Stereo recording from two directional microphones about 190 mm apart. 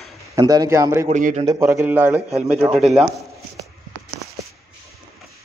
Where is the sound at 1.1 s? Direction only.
40° right (ahead or behind).